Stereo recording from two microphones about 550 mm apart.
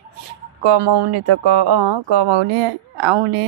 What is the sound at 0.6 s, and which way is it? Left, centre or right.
Speech, right.